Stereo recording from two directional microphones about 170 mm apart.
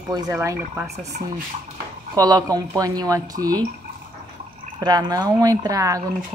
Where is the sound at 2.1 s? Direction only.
20° right (ahead or behind).